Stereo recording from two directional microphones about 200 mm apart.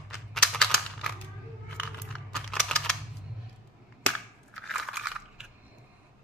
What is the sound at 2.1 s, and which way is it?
Computer keyboard, 5° left (ahead or behind).